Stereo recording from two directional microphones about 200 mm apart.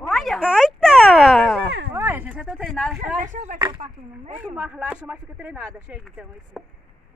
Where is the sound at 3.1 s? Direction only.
40° right (ahead or behind).